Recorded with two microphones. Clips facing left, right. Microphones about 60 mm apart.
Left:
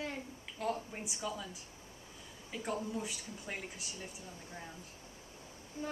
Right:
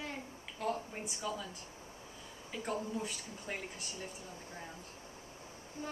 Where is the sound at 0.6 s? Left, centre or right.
Centre.